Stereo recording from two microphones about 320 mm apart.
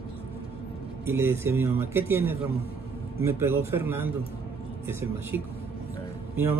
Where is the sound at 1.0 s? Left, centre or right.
Centre.